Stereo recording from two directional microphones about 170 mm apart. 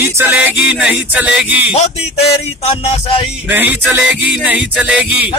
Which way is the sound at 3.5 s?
10° right (ahead or behind).